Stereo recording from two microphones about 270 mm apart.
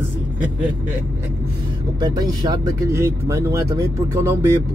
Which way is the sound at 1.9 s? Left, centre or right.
Centre.